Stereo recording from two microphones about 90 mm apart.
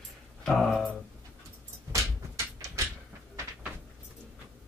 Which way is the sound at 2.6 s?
35° right (ahead or behind).